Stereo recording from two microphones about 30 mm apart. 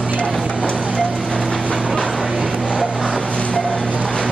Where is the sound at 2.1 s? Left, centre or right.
Centre.